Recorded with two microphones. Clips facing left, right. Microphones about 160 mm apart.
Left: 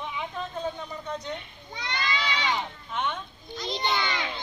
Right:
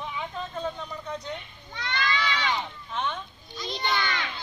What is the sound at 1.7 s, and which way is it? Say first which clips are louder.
Goat: right 2 dB; 15° left (ahead or behind).